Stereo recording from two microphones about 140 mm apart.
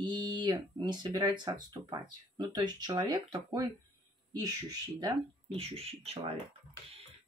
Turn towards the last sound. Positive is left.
turn(degrees=-45)  # may be behind; listen again after turning